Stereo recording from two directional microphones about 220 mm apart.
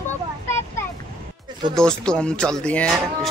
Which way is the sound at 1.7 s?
5° left (ahead or behind).